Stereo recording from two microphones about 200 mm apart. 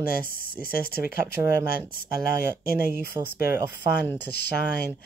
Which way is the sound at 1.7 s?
50° left (ahead or behind).